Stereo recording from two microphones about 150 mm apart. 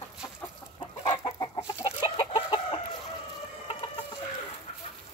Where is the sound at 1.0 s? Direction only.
40° left (ahead or behind).